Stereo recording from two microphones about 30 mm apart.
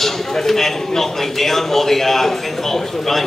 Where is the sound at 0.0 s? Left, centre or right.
Centre.